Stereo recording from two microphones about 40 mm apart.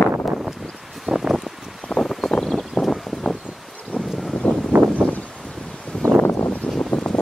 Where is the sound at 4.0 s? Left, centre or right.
Centre.